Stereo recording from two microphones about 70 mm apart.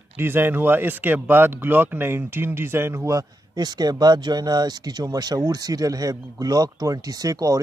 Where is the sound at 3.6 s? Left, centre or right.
Right.